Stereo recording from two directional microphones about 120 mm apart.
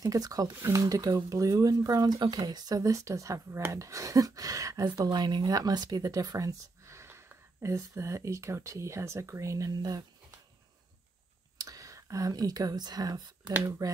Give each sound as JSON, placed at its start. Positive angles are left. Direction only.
{"t": 0.0, "sound": "speech", "side_deg": -30}
{"t": 11.5, "sound": "speech", "side_deg": -30}